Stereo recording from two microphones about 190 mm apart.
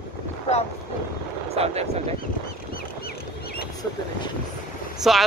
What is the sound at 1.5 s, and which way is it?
Speech, 35° right (ahead or behind).